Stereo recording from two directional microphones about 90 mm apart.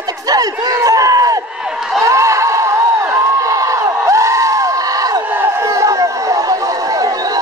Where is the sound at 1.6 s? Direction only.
5° right (ahead or behind).